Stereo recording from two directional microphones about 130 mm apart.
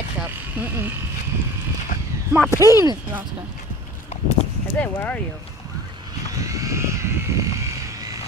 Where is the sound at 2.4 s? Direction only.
20° right (ahead or behind).